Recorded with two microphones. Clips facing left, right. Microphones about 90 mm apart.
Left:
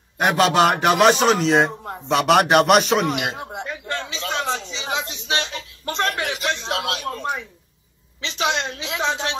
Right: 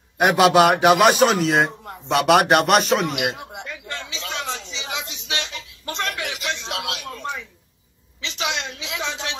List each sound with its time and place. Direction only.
0.2 s a man's voice: 5° right (ahead or behind)
3.2 s a sound: 35° left (ahead or behind)
8.2 s a woman's voice: 40° left (ahead or behind)